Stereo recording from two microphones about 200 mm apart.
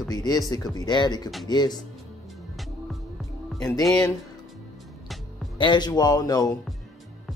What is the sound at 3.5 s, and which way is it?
Speech, 20° left (ahead or behind).